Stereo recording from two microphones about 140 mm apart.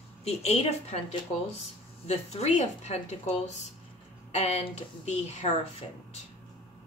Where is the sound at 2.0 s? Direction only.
50° left (ahead or behind).